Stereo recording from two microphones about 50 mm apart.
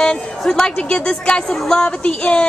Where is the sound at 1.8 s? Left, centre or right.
Left.